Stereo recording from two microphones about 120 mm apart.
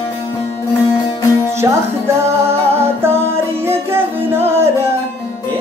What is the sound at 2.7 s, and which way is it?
Music, 20° right (ahead or behind).